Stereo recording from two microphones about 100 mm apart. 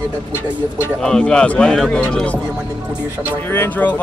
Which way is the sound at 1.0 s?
5° left (ahead or behind).